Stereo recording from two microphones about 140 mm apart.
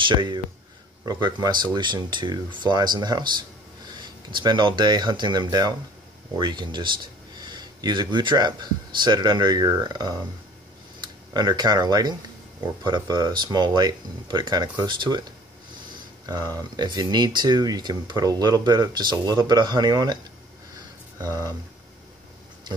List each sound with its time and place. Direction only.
0.0 s speech: 35° right (ahead or behind)
11.3 s speech: 30° right (ahead or behind)
16.3 s speech: 30° right (ahead or behind)
21.2 s speech: 25° right (ahead or behind)